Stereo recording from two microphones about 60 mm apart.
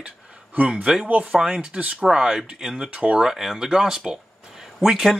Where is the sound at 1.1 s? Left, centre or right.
Right.